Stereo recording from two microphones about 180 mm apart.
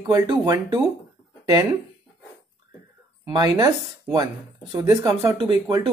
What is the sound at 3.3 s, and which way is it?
Speech, 20° right (ahead or behind).